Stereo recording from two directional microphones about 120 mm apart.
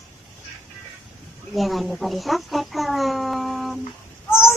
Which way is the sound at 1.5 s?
Centre (ahead or behind).